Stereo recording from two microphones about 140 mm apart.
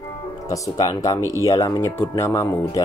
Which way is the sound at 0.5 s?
25° left (ahead or behind).